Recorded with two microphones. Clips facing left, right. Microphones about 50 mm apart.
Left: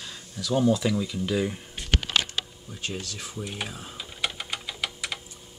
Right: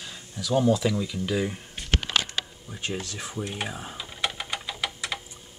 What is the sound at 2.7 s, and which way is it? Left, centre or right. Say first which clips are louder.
Speech: right 2 dB; right.